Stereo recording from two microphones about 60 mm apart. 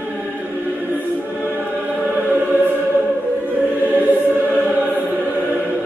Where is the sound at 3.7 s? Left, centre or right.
Right.